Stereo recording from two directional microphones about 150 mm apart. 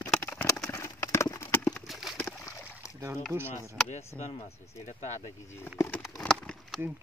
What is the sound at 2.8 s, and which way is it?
Rowboat, 20° left (ahead or behind).